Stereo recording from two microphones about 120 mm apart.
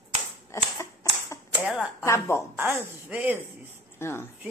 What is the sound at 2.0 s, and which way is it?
Speech, 25° left (ahead or behind).